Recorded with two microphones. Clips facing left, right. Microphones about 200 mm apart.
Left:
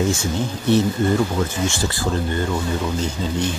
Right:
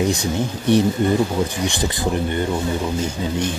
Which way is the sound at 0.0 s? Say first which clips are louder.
Right 1 dB; 15° right (ahead or behind).